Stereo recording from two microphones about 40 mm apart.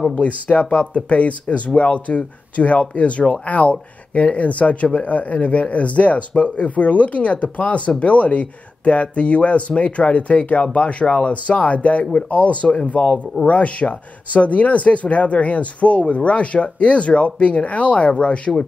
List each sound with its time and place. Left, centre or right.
0.1 s speech: left